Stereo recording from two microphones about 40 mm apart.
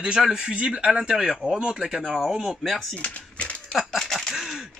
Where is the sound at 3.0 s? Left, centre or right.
Left.